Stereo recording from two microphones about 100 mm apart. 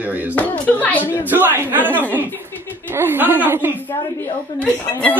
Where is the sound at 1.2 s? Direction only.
20° right (ahead or behind).